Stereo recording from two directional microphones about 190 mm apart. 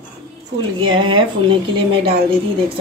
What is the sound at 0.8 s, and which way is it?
Speech, 25° right (ahead or behind).